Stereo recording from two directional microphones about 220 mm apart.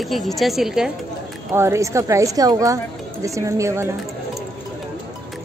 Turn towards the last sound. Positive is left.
turn(degrees=-10)  # may be behind; listen again after turning